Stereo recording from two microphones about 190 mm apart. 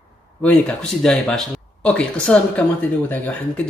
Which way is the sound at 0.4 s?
5° left (ahead or behind).